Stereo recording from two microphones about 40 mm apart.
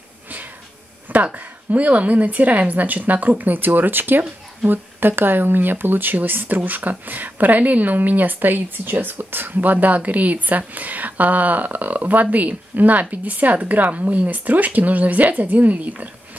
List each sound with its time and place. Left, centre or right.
1.3 s a woman's voice: right